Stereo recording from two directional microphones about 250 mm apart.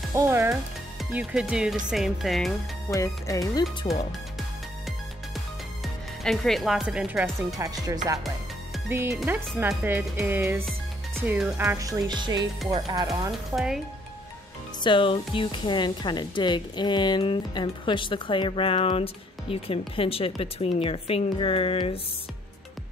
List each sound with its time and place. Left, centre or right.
0.1 s speech: centre
2.9 s speech: centre
6.2 s speech: centre
7.5 s speech: centre
14.8 s speech: centre